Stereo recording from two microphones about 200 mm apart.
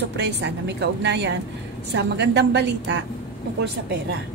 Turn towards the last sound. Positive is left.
turn(degrees=-55)  # may be behind; listen again after turning